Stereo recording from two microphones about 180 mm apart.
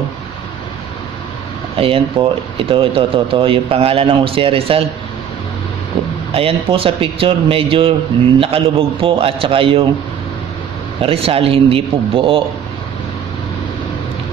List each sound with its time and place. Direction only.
1.8 s speech: 30° right (ahead or behind)
6.3 s speech: 30° right (ahead or behind)
11.0 s speech: 30° right (ahead or behind)